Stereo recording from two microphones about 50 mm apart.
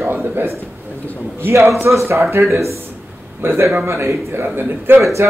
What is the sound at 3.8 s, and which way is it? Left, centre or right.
Speech, right.